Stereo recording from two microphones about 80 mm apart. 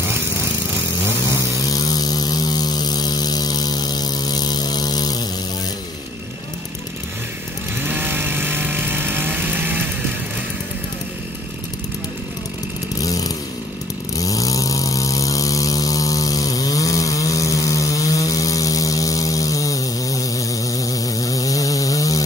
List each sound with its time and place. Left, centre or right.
1.7 s hum: left
7.8 s vehicle: right
13.0 s chainsaw: left
14.1 s a sound: left